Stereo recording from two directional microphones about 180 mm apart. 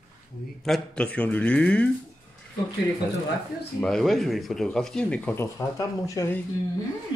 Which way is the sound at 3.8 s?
5° left (ahead or behind).